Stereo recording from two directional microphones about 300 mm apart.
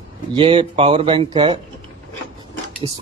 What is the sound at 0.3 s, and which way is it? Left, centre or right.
Speech, centre.